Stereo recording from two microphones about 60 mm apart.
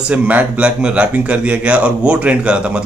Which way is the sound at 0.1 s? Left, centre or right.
Right.